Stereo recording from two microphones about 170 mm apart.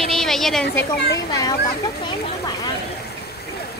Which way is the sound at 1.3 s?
20° left (ahead or behind).